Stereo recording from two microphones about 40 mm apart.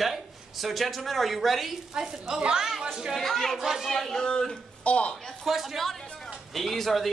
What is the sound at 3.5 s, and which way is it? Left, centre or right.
Speech, centre.